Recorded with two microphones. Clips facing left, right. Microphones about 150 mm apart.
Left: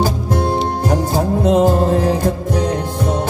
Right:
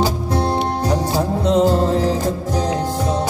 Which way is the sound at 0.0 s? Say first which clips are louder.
Left 1 dB; 50° left (ahead or behind).